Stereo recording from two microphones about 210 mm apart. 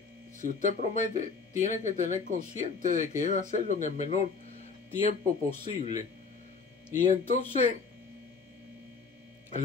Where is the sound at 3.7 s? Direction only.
35° left (ahead or behind).